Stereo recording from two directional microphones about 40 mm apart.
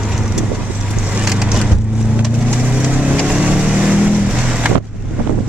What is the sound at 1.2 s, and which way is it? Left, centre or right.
Vehicle, centre.